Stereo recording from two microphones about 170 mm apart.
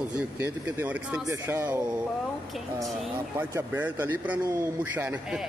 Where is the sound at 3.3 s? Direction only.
15° right (ahead or behind).